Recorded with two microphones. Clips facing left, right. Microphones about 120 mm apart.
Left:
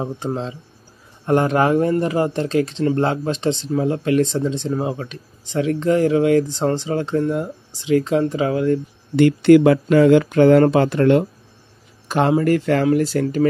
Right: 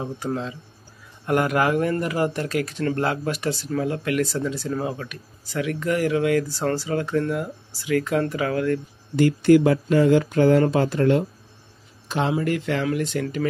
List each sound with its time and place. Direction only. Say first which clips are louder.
0.0 s speech: left 3 dB; 30° left (ahead or behind)
9.1 s speech: left 4 dB; 75° left (ahead or behind)
12.1 s speech: left 7 dB; 50° left (ahead or behind)